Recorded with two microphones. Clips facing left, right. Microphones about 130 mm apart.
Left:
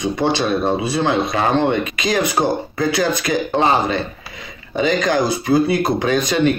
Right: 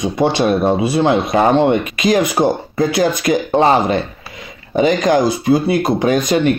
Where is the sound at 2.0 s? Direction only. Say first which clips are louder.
Right 5 dB; 45° right (ahead or behind).